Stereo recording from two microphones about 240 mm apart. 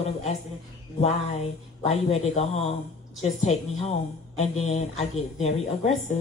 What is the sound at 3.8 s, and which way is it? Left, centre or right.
Speech, left.